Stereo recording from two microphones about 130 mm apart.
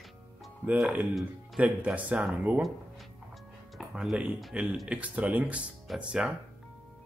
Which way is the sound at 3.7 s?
5° right (ahead or behind).